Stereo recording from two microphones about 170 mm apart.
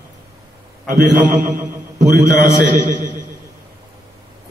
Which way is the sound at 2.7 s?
50° right (ahead or behind).